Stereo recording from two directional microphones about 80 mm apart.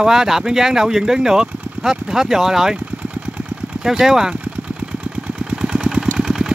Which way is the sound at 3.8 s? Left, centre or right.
Centre.